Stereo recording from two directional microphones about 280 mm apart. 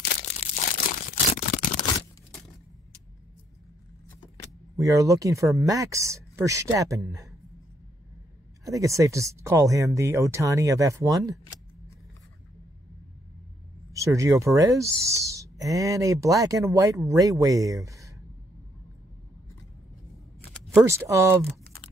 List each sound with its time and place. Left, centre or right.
0.4 s a sound: left
4.7 s speech: centre
8.6 s speech: centre
13.9 s speech: centre
20.7 s speech: centre